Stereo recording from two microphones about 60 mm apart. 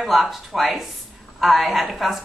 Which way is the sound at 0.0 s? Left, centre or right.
Centre.